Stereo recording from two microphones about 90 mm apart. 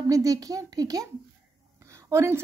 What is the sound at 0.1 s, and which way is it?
Speech, 40° right (ahead or behind).